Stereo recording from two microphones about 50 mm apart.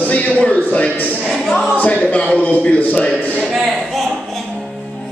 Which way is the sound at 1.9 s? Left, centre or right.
Left.